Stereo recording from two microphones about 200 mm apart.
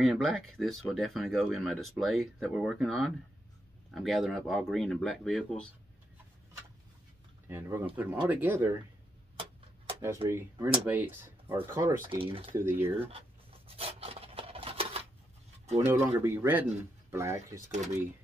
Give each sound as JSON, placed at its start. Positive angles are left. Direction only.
{"t": 0.0, "sound": "speech", "side_deg": 0}
{"t": 7.4, "sound": "speech", "side_deg": -10}
{"t": 10.0, "sound": "speech", "side_deg": -15}
{"t": 12.1, "sound": "speech", "side_deg": -25}
{"t": 12.5, "sound": "speech", "side_deg": -10}
{"t": 13.7, "sound": "rub", "side_deg": -30}
{"t": 15.8, "sound": "speech", "side_deg": -10}